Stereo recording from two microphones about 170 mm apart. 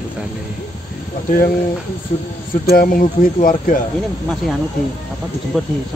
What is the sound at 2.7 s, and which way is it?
Speech, 55° left (ahead or behind).